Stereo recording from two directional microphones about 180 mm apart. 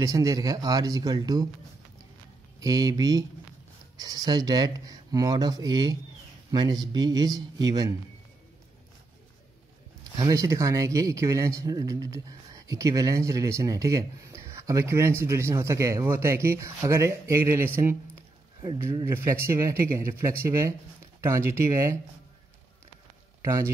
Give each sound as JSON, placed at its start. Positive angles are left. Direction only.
{"t": 0.0, "sound": "speech", "side_deg": -20}
{"t": 2.6, "sound": "speech", "side_deg": -20}
{"t": 10.1, "sound": "speech", "side_deg": -20}
{"t": 18.8, "sound": "speech", "side_deg": -15}
{"t": 23.4, "sound": "a man's voice", "side_deg": -15}